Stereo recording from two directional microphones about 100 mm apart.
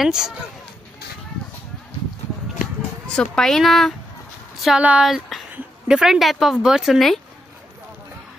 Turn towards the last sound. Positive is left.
turn(degrees=0)  # may be behind; listen again after turning